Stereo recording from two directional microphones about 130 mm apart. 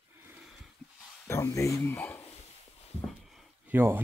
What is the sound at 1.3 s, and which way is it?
Speech, 20° left (ahead or behind).